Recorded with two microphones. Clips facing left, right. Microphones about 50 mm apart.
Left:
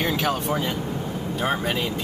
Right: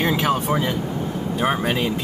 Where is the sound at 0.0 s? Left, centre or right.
Right.